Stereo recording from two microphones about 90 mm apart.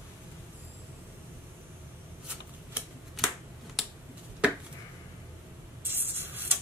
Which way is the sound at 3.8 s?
Centre (ahead or behind).